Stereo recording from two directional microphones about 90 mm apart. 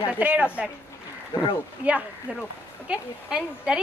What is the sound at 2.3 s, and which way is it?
A woman's voice, 15° right (ahead or behind).